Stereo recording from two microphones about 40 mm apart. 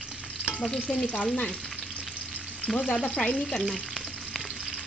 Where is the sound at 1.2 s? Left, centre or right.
Left.